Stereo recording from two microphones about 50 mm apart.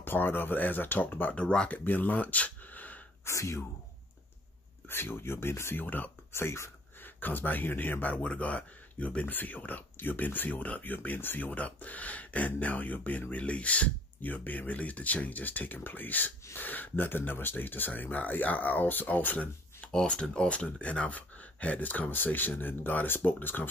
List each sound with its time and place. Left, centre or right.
0.0 s speech: left
1.3 s speech: left
1.7 s speech: left
3.3 s speech: left
4.8 s speech: left
5.9 s speech: left
6.3 s speech: left
7.0 s a man's voice: left
19.9 s speech: centre; by 23.7 s left